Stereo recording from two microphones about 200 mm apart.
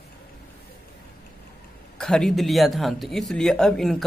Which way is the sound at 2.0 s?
5° left (ahead or behind).